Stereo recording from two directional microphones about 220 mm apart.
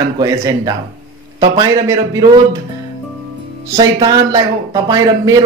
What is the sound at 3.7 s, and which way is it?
Speech, 15° right (ahead or behind).